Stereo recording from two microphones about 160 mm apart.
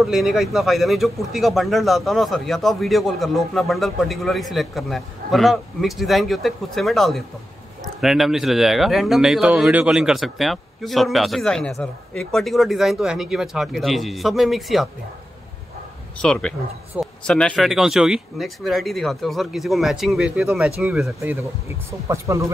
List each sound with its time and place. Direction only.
0.0 s speech: centre (ahead or behind)
16.2 s speech: 5° left (ahead or behind); by 22.5 s 20° right (ahead or behind)